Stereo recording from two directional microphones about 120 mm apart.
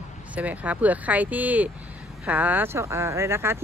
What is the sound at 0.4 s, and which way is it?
Speech, 10° right (ahead or behind).